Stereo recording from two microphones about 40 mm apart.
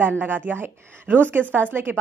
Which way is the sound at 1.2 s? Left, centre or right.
Right.